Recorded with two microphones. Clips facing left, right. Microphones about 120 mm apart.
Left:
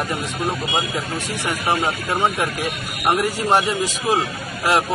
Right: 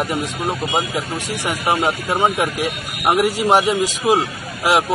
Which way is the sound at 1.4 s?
15° right (ahead or behind).